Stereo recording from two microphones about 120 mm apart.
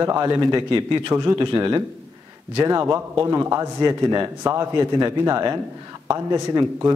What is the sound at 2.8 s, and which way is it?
A man's voice, 25° right (ahead or behind).